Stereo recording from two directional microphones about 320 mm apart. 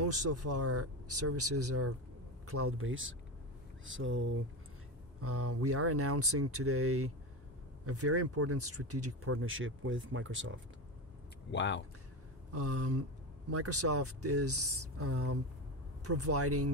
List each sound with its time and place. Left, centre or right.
0.0 s speech: right
11.5 s speech: left
12.5 s speech: right